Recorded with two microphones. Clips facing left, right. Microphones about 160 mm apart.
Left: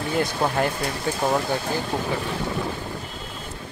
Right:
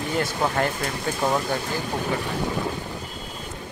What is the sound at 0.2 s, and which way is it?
Speech, 15° left (ahead or behind).